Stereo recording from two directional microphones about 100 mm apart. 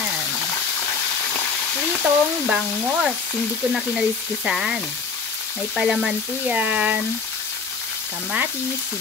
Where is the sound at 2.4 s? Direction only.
10° right (ahead or behind).